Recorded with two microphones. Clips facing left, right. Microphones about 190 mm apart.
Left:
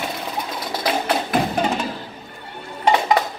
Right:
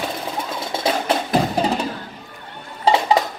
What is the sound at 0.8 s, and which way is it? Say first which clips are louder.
Music: right 1 dB; 30° right (ahead or behind).